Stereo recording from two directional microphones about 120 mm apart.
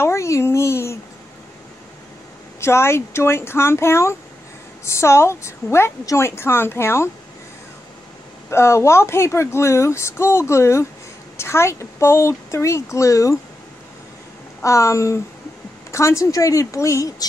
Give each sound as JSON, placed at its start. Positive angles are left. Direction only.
{"t": 0.0, "sound": "a sound", "side_deg": 25}
{"t": 2.6, "sound": "speech", "side_deg": 20}
{"t": 8.5, "sound": "speech", "side_deg": 20}
{"t": 14.6, "sound": "speech", "side_deg": 25}